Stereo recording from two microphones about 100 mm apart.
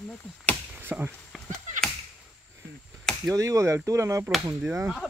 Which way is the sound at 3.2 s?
35° right (ahead or behind).